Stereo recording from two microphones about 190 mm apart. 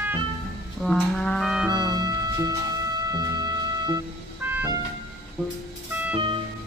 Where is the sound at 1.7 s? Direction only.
20° right (ahead or behind).